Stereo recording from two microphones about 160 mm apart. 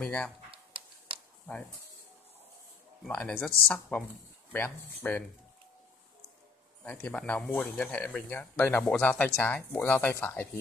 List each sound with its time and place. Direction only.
0.0 s speech: 10° left (ahead or behind)
0.5 s a sound: 35° right (ahead or behind)
3.1 s speech: 5° left (ahead or behind)
6.8 s speech: 10° left (ahead or behind)